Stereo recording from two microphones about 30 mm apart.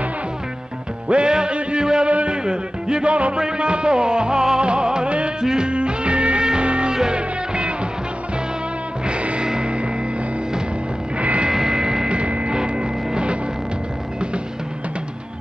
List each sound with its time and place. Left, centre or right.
1.0 s music: right
2.0 s a sound: right
2.3 s music: right
3.1 s music: right
3.3 s music: right
5.7 s music: right
6.4 s music: right
9.0 s music: right
11.1 s music: right
11.5 s music: right
12.1 s music: right